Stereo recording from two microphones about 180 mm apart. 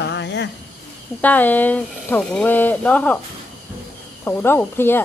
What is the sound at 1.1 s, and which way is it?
Speech, 10° left (ahead or behind).